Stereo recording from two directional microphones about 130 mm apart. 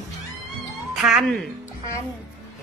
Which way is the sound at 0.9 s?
Centre (ahead or behind).